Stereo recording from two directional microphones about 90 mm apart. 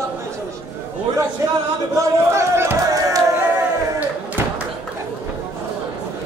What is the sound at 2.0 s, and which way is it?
Speech, 30° right (ahead or behind).